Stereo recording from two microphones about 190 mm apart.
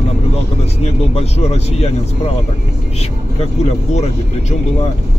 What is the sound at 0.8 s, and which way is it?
Speech, 35° left (ahead or behind).